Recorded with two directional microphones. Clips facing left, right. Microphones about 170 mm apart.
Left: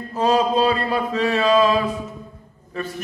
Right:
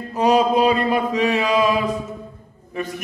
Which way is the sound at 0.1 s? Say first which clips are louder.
Right 2 dB; 15° right (ahead or behind).